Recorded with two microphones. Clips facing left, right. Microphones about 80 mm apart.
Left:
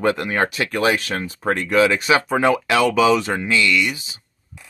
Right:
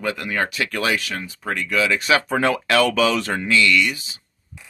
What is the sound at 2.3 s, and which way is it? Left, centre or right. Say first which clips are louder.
Speech: left 2 dB; centre.